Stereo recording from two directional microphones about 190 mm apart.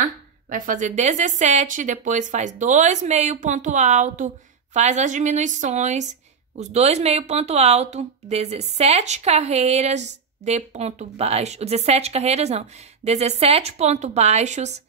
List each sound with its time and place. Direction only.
0.0 s speech: 45° right (ahead or behind)